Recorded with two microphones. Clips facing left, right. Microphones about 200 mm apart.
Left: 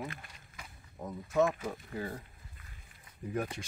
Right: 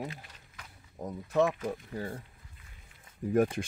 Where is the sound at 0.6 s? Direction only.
10° left (ahead or behind).